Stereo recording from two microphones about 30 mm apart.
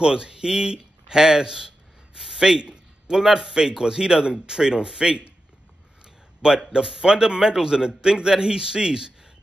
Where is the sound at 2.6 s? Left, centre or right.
Right.